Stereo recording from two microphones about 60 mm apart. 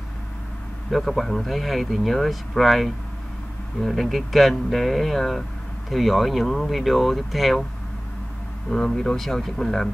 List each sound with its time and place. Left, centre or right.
0.8 s speech: centre
8.6 s speech: centre